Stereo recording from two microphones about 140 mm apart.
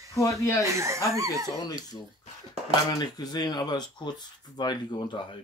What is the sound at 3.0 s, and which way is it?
Speech, 30° left (ahead or behind).